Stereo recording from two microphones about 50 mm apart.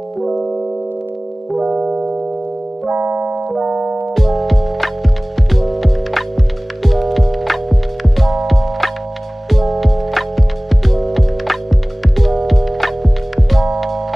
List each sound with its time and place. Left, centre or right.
0.2 s music: centre
1.7 s music: centre
2.9 s keyboard: right
3.5 s music: right
4.1 s music: centre